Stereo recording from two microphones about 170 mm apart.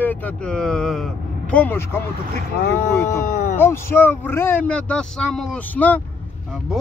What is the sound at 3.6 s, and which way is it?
Speech, 15° left (ahead or behind).